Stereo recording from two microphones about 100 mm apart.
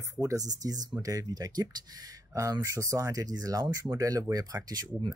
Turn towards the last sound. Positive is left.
turn(degrees=-45)  # may be behind; listen again after turning